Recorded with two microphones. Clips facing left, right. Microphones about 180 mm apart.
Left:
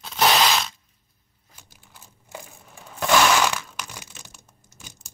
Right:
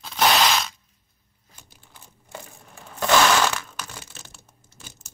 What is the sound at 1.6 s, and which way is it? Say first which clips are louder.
Crumpling: even; 10° left (ahead or behind).